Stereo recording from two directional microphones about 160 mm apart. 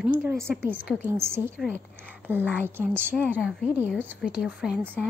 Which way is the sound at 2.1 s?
10° right (ahead or behind).